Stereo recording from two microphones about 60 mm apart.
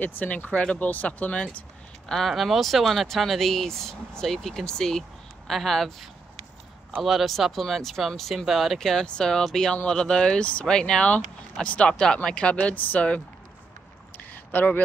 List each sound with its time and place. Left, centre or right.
0.0 s speech: left
2.0 s speech: centre
7.0 s speech: centre
12.5 s speech: left
14.1 s a sound: left